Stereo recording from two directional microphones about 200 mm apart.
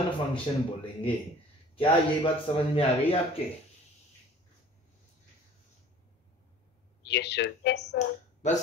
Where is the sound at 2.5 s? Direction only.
30° left (ahead or behind).